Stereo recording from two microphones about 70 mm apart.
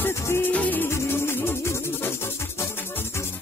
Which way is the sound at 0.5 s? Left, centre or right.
Centre.